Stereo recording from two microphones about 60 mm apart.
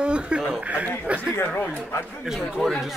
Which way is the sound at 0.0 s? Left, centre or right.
Centre.